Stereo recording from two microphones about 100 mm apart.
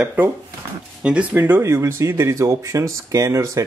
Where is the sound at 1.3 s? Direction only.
20° right (ahead or behind).